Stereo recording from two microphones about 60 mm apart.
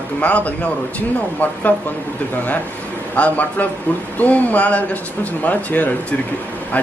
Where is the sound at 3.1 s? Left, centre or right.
Left.